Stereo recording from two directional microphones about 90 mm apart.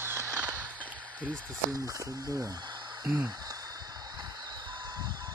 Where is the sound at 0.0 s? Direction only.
30° right (ahead or behind).